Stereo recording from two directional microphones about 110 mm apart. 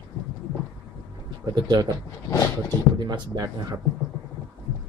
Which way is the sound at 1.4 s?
40° right (ahead or behind).